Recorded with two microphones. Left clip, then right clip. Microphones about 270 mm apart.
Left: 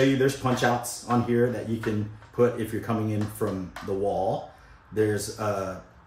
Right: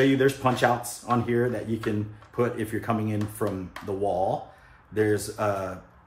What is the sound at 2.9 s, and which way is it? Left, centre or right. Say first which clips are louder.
Speech: right 1 dB; centre.